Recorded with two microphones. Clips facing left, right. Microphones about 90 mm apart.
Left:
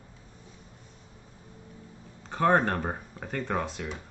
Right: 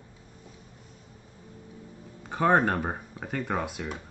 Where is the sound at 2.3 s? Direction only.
10° right (ahead or behind).